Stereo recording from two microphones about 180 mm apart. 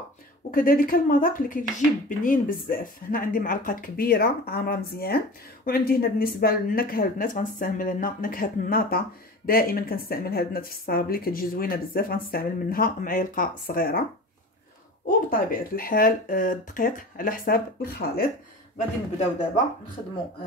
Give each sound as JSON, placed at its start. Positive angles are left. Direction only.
{"t": 0.5, "sound": "a woman's voice", "side_deg": 50}
{"t": 15.0, "sound": "speech", "side_deg": 50}